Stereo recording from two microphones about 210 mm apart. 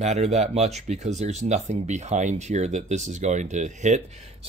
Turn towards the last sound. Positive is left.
turn(degrees=-35)  # may be behind; listen again after turning